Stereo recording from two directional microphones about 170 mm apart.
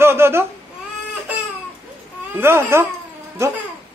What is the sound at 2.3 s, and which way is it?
Speech, 15° right (ahead or behind).